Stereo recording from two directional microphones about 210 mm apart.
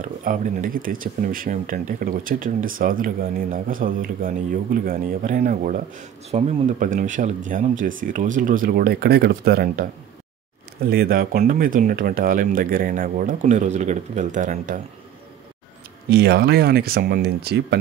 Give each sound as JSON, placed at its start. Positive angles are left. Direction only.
{"t": 0.0, "sound": "speech", "side_deg": -40}
{"t": 10.9, "sound": "speech", "side_deg": -45}
{"t": 16.1, "sound": "speech", "side_deg": -50}